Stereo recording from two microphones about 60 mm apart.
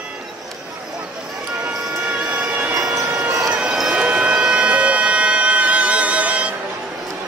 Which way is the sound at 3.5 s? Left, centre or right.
Centre.